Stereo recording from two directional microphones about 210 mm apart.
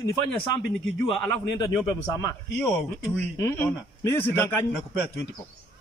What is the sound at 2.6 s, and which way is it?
Speech, centre (ahead or behind).